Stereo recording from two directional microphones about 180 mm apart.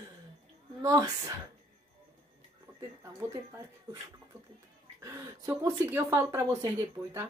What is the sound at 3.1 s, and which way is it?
Speech, 15° right (ahead or behind).